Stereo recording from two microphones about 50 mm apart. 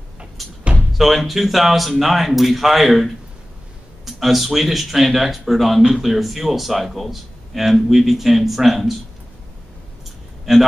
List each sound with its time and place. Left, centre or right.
0.9 s a man's voice: centre